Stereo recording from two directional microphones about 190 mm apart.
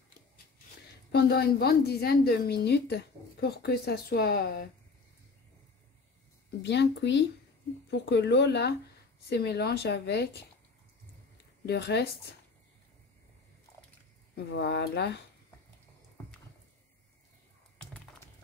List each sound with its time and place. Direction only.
1.1 s a woman's voice: 55° left (ahead or behind)
6.6 s a woman's voice: 65° left (ahead or behind)
11.6 s a woman's voice: 60° left (ahead or behind)
14.3 s a woman's voice: 60° left (ahead or behind)